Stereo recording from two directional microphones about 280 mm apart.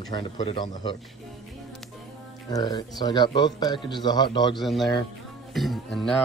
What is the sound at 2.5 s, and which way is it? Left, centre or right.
Speech, centre.